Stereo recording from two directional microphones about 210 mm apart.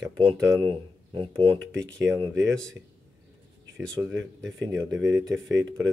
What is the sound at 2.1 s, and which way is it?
Speech, 5° right (ahead or behind).